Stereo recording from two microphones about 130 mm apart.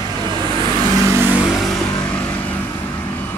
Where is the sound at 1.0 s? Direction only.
20° left (ahead or behind).